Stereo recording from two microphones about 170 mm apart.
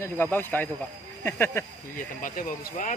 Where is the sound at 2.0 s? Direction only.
55° left (ahead or behind).